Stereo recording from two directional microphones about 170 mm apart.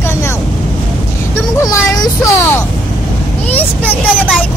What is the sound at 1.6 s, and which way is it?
A child's voice, 20° left (ahead or behind).